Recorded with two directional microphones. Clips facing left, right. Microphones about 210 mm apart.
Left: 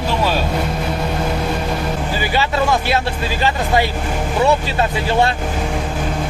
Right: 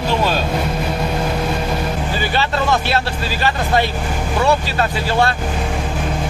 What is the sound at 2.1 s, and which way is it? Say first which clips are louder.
Speech: left 2 dB; 10° left (ahead or behind).